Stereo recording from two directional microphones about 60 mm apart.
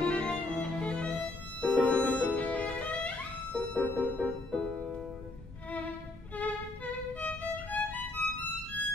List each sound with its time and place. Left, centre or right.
0.0 s violin: centre
1.6 s music: centre
6.3 s violin: left